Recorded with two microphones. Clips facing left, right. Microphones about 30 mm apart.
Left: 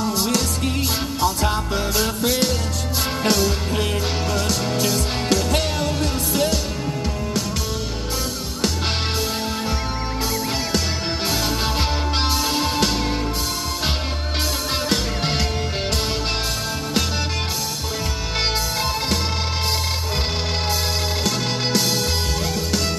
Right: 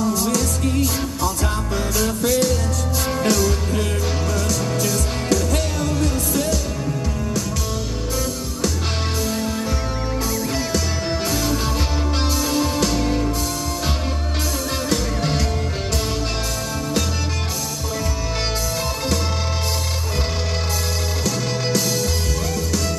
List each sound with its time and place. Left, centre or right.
0.0 s music: left
2.0 s music: left
14.9 s music: left
21.2 s music: left